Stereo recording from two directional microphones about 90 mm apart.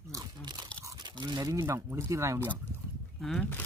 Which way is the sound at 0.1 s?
50° right (ahead or behind).